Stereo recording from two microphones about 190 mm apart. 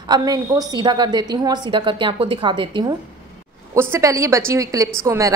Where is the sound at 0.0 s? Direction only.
20° right (ahead or behind).